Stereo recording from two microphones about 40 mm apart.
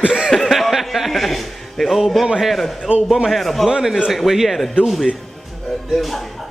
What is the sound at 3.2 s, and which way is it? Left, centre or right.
Speech, centre.